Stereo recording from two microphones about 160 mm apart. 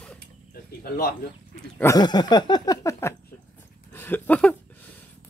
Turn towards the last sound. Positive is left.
turn(degrees=10)  # may be behind; listen again after turning